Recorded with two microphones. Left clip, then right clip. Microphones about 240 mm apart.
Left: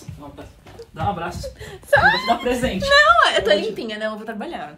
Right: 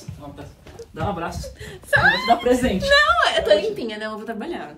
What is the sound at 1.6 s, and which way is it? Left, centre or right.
Speech, centre.